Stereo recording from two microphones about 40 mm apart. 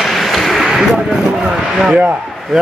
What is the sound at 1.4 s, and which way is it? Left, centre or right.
Speech, right.